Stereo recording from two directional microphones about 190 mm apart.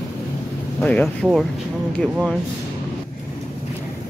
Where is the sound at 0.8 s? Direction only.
Centre (ahead or behind).